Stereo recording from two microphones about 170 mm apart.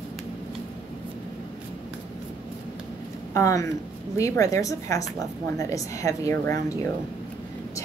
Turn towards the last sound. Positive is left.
turn(degrees=20)  # may be behind; listen again after turning